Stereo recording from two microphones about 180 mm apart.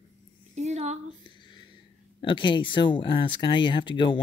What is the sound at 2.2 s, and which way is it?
Speech, 25° left (ahead or behind).